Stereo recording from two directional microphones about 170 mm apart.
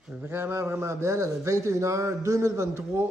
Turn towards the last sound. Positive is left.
turn(degrees=-15)  # may be behind; listen again after turning